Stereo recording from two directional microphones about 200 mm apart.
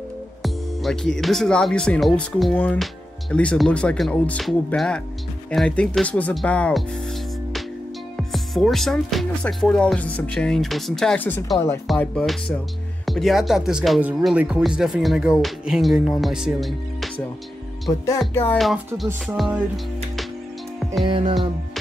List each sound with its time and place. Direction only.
0.4 s speech: centre (ahead or behind)
8.2 s speech: centre (ahead or behind)
11.5 s music: 15° left (ahead or behind)
11.9 s speech: centre (ahead or behind)
18.3 s music: 10° left (ahead or behind)
19.2 s speech: centre (ahead or behind)
21.0 s music: 25° right (ahead or behind)